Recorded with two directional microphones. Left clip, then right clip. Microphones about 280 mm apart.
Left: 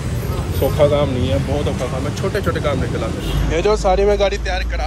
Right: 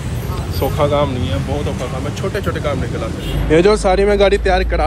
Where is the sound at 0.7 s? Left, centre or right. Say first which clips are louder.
Left 1 dB; centre.